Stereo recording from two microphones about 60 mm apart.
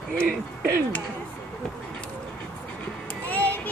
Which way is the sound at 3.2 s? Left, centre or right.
Left.